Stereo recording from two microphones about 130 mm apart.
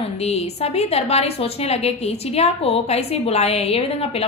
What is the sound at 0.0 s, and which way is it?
A woman's voice, 55° left (ahead or behind).